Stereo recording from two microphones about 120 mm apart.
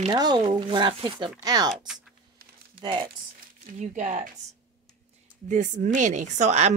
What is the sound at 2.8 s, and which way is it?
Speech, 40° right (ahead or behind).